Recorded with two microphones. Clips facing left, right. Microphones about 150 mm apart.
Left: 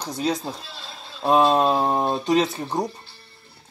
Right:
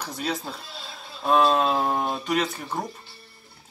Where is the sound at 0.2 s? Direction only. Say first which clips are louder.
Left 6 dB; 15° left (ahead or behind).